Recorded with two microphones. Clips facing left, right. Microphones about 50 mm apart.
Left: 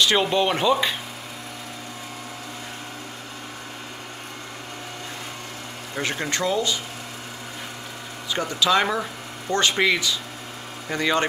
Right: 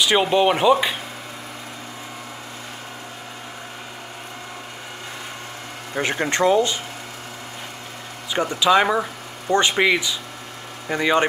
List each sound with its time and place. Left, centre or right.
0.0 s speech: centre
5.9 s speech: right
8.3 s speech: centre